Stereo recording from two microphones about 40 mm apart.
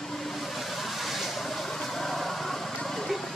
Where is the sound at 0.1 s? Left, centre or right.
Centre.